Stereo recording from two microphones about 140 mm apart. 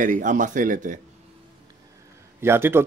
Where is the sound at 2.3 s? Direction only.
15° right (ahead or behind).